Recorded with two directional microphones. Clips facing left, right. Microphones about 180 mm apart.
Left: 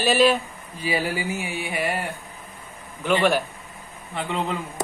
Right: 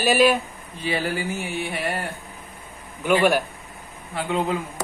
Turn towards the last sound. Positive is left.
turn(degrees=-5)  # may be behind; listen again after turning